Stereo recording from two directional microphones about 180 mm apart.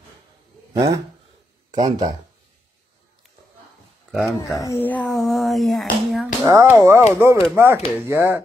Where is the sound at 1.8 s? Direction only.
25° right (ahead or behind).